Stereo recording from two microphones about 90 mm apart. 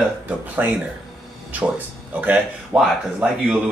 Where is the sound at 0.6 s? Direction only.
20° right (ahead or behind).